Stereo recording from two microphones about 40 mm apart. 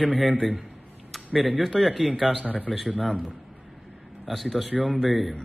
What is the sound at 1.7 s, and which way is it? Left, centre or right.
Speech, centre.